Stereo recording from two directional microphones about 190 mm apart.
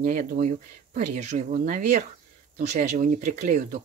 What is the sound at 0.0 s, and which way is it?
Speech, 40° right (ahead or behind).